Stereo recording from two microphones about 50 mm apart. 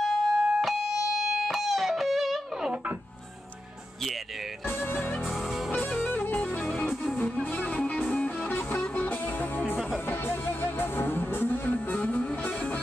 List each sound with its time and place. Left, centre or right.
0.0 s music: centre
4.6 s music: left
5.2 s music: centre
5.7 s music: left
11.9 s music: left